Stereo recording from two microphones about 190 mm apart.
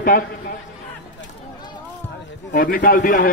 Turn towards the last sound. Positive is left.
turn(degrees=45)  # may be behind; listen again after turning